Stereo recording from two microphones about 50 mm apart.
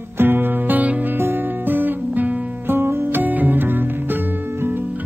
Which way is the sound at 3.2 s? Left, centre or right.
Right.